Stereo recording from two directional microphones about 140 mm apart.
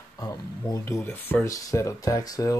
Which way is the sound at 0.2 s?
25° left (ahead or behind).